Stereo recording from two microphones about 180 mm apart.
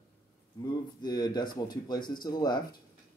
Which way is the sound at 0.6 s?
25° left (ahead or behind).